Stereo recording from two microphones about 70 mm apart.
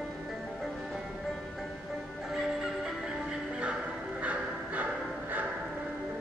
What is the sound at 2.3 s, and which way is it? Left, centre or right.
Music, centre.